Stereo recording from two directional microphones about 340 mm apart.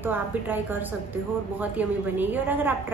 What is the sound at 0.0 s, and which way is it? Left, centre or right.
A woman's voice, centre.